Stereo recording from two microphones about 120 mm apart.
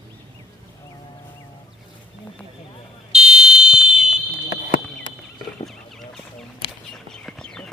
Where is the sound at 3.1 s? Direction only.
5° right (ahead or behind).